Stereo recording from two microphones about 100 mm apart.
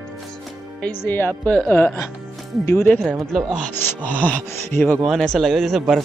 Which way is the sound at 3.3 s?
5° left (ahead or behind).